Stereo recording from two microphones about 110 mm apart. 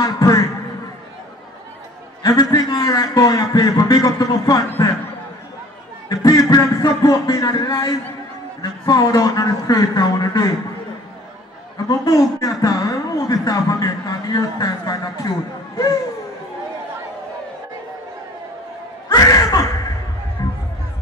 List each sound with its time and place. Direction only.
0.0 s speech: 30° left (ahead or behind)
2.2 s a woman's voice: 35° left (ahead or behind)
4.6 s speech: 25° left (ahead or behind)
6.0 s a woman's voice: 35° left (ahead or behind)
11.9 s a woman's voice: 30° left (ahead or behind)
19.0 s a sound: 35° left (ahead or behind)
20.4 s music: 35° left (ahead or behind)